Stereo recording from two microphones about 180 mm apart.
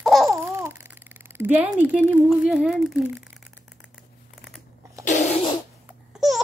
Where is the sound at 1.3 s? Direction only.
10° right (ahead or behind).